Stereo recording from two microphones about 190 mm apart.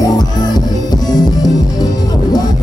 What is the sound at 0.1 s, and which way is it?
Music, 20° left (ahead or behind).